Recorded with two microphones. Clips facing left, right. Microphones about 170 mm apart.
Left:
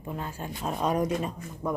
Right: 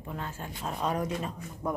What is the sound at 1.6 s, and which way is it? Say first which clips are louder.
Speech: left 2 dB; 5° right (ahead or behind).